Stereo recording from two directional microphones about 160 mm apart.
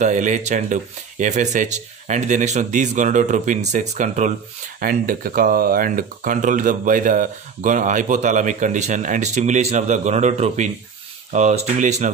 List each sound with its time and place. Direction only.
0.0 s speech: 50° right (ahead or behind)
4.7 s speech: 60° right (ahead or behind)